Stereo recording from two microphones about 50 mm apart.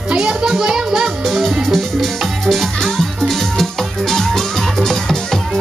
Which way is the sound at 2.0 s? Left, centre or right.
Centre.